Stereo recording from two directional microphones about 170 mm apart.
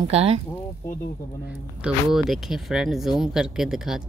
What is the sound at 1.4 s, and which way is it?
Speech, 5° right (ahead or behind).